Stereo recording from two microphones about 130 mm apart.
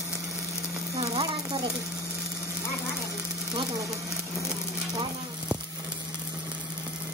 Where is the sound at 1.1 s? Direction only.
50° right (ahead or behind).